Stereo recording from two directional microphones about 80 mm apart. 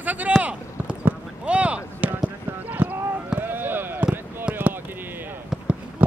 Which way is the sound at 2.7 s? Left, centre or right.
Right.